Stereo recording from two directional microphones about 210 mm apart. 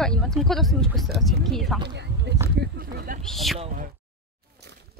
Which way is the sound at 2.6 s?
45° right (ahead or behind).